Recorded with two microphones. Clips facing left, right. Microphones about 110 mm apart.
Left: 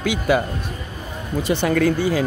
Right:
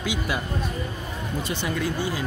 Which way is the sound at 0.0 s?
55° left (ahead or behind).